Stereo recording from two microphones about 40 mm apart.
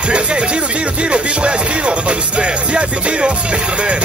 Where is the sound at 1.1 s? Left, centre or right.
Right.